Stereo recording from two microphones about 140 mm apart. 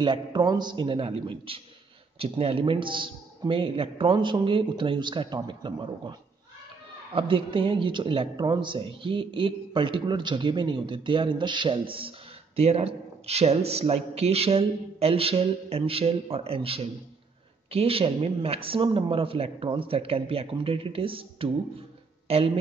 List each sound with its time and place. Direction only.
0.0 s a man's voice: 35° right (ahead or behind)
7.2 s a man's voice: 40° right (ahead or behind)